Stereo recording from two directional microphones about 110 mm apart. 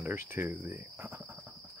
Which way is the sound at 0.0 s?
20° right (ahead or behind).